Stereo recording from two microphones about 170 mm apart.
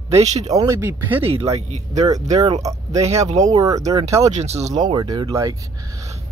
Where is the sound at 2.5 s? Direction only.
20° right (ahead or behind).